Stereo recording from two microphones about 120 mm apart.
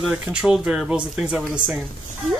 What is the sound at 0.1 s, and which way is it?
A woman's voice, 10° right (ahead or behind).